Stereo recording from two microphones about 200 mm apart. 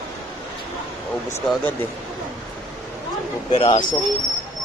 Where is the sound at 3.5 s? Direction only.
25° left (ahead or behind).